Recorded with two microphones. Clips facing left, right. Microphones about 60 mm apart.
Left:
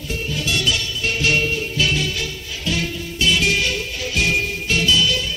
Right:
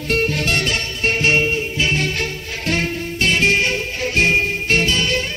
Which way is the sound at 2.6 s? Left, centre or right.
Right.